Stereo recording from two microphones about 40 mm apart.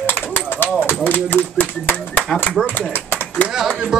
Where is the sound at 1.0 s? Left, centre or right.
Left.